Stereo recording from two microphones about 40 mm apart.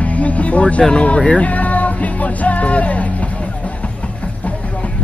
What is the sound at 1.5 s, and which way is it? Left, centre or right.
Music, left.